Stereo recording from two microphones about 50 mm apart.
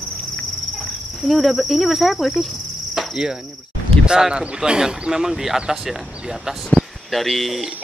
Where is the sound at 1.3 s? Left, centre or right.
Centre.